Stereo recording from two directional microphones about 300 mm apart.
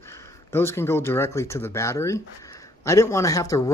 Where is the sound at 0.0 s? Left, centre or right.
Centre.